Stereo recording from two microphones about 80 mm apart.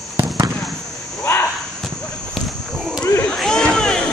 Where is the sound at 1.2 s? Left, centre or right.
Left.